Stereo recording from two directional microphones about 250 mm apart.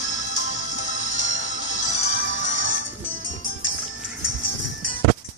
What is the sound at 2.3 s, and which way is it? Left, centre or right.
Music, left.